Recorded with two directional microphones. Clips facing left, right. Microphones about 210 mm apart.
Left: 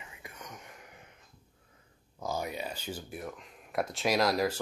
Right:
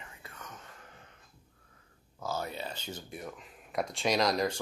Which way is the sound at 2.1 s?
15° left (ahead or behind).